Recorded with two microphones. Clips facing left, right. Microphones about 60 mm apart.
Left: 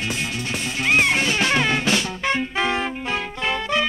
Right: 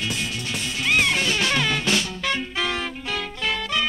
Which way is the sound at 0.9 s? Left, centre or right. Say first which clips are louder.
Left 2 dB; left.